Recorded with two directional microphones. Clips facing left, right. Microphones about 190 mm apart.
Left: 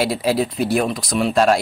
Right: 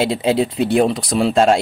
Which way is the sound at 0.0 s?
25° right (ahead or behind).